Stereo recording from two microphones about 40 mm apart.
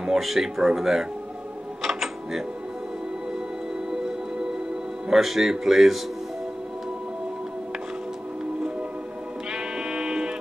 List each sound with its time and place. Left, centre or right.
0.0 s speech: centre
1.8 s a sound: centre
5.1 s speech: centre
9.5 s music: centre